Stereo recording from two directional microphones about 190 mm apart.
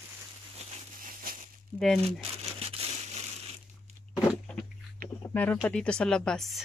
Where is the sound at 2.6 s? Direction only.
30° right (ahead or behind).